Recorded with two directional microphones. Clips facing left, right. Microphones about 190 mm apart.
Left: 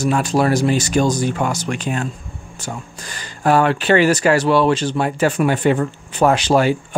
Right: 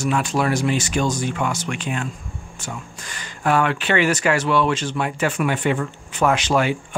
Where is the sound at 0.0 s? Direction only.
40° left (ahead or behind).